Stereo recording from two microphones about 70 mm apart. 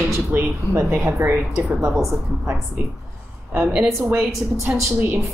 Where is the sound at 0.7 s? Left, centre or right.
Right.